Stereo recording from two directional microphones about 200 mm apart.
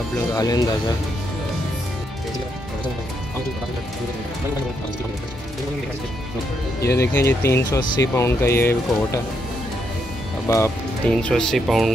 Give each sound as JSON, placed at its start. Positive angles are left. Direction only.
{"t": 0.3, "sound": "speech", "side_deg": 15}
{"t": 6.8, "sound": "speech", "side_deg": 15}
{"t": 10.5, "sound": "speech", "side_deg": 15}
{"t": 11.2, "sound": "speech", "side_deg": 0}